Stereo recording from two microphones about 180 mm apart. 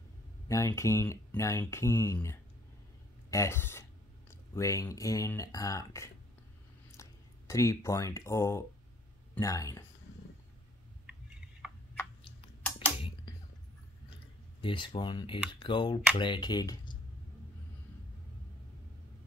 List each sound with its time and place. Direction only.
0.5 s speech: 15° left (ahead or behind)
12.2 s a sound: 30° left (ahead or behind)
14.6 s speech: 30° left (ahead or behind)